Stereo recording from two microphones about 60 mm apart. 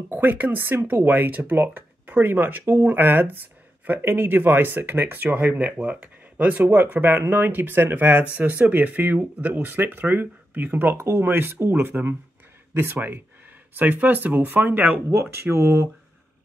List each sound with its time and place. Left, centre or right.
0.1 s speech: right
15.3 s speech: right